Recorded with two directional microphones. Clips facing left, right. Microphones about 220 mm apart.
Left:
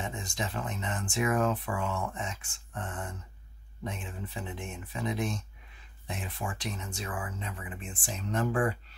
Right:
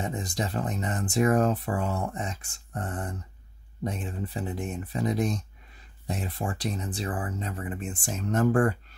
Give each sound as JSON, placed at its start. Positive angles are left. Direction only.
{"t": 0.0, "sound": "speech", "side_deg": -40}